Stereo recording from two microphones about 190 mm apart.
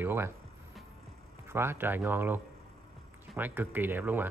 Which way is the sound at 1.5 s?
10° right (ahead or behind).